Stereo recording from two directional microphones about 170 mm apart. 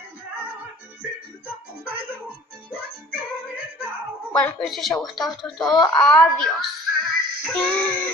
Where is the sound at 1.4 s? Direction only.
10° right (ahead or behind).